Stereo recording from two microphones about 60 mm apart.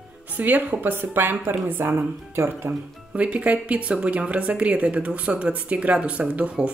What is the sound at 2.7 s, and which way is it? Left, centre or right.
A woman's voice, right.